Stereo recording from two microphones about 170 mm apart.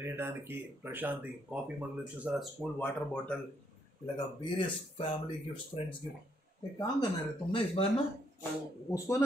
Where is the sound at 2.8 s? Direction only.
5° left (ahead or behind).